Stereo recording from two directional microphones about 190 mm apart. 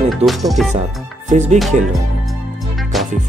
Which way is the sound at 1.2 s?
35° right (ahead or behind).